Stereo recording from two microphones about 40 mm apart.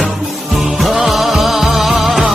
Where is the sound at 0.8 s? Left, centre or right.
Centre.